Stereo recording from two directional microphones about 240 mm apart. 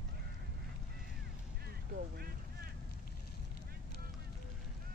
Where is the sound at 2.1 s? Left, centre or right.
Right.